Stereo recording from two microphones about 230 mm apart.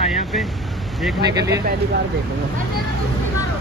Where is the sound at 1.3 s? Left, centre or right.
Centre.